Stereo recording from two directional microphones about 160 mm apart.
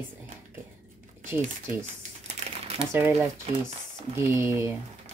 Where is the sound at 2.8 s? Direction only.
15° right (ahead or behind).